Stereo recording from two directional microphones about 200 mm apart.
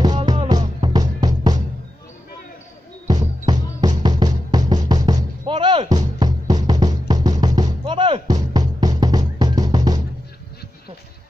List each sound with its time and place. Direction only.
0.0 s music: 20° right (ahead or behind)
3.1 s music: 20° right (ahead or behind)